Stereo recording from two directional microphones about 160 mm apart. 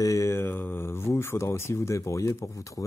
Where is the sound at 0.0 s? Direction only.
20° left (ahead or behind).